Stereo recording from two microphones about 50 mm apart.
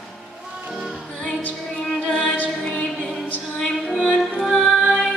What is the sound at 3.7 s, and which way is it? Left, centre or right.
Music, centre.